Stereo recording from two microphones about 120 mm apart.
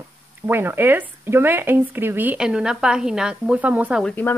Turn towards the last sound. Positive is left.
turn(degrees=15)  # may be behind; listen again after turning